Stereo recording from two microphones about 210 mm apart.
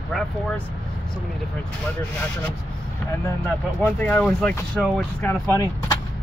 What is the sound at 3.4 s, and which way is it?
Speech, 10° left (ahead or behind).